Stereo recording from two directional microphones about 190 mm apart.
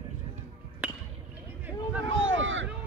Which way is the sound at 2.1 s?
85° right.